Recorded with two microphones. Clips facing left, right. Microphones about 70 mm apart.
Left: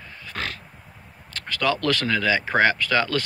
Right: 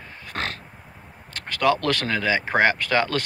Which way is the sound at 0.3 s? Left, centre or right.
Right.